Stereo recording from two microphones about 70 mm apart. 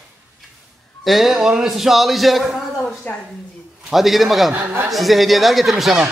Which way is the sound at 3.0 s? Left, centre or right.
Left.